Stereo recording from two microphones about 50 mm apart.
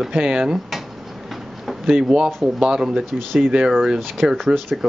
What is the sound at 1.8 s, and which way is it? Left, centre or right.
Speech, centre.